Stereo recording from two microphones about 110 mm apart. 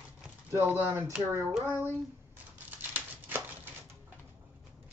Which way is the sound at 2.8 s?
20° right (ahead or behind).